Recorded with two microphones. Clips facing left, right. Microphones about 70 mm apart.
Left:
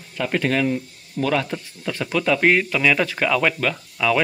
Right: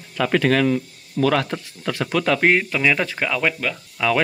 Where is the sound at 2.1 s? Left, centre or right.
Right.